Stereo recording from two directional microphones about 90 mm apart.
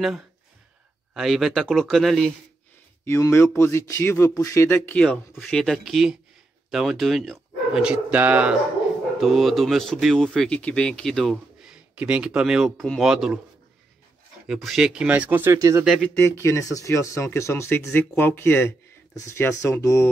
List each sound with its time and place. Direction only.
1.1 s speech: centre (ahead or behind)
3.1 s speech: 35° left (ahead or behind)
4.8 s speech: 15° left (ahead or behind); by 8.5 s 15° right (ahead or behind)
9.2 s speech: centre (ahead or behind)
11.6 s speech: 10° right (ahead or behind)
12.7 s speech: 10° left (ahead or behind)
13.0 s speech: 5° right (ahead or behind)
14.5 s speech: centre (ahead or behind); by 15.5 s 20° right (ahead or behind)
15.5 s speech: 35° right (ahead or behind)
16.2 s speech: 30° left (ahead or behind)